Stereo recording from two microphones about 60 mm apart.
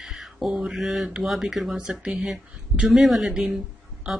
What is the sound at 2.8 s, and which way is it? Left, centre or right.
Speech, centre.